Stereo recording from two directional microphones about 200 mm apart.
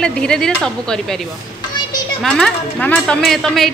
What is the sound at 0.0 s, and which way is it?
A woman's voice, 5° left (ahead or behind).